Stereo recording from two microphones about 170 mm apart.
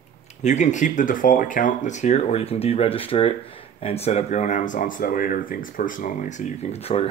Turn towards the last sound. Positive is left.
turn(degrees=35)  # may be behind; listen again after turning